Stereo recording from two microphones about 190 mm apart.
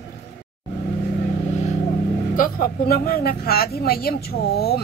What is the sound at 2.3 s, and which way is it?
A woman's voice, 45° left (ahead or behind).